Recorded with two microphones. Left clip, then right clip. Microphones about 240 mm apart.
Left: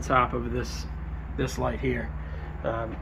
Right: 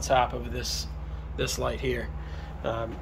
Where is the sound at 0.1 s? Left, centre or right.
Centre.